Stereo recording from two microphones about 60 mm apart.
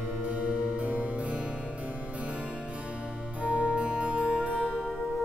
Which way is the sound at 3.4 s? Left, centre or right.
Right.